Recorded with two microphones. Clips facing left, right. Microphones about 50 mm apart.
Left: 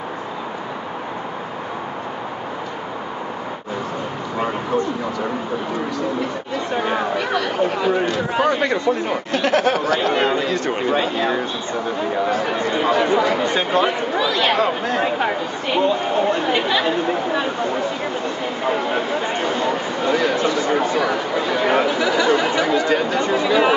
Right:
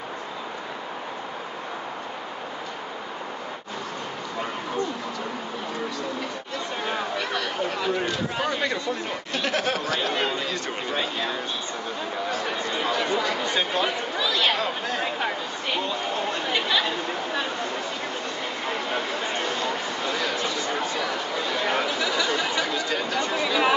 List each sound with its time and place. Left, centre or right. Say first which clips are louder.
6.7 s speech: left 8 dB; left
12.3 s speech: left 7 dB; centre
12.5 s speech: left 8 dB; left
18.7 s a sound: left 8 dB; centre
20.4 s speech: left 8 dB; left